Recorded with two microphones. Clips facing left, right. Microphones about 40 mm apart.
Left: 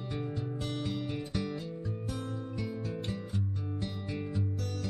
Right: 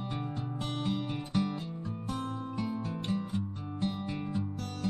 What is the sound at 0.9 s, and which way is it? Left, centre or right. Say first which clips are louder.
Music: right 2 dB; centre.